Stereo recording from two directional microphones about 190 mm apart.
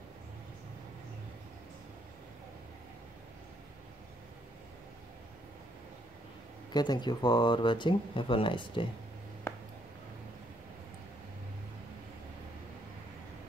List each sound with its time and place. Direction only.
6.7 s speech: 20° left (ahead or behind)